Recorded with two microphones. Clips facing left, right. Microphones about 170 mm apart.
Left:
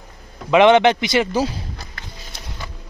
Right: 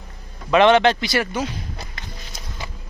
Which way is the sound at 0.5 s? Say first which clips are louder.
Left 2 dB; 15° left (ahead or behind).